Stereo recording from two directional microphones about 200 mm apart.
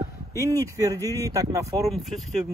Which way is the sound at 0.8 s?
15° right (ahead or behind).